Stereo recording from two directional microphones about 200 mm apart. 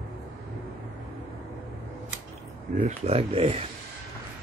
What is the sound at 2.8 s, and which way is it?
Speech, 30° right (ahead or behind).